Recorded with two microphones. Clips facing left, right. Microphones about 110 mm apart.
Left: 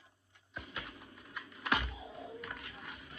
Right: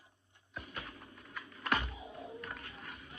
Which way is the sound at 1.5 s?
15° left (ahead or behind).